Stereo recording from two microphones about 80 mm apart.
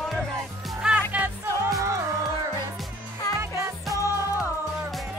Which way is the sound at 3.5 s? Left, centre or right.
Left.